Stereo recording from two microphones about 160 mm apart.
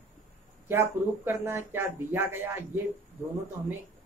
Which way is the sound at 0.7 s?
15° right (ahead or behind).